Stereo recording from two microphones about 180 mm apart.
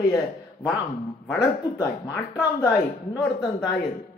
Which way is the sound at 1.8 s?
15° left (ahead or behind).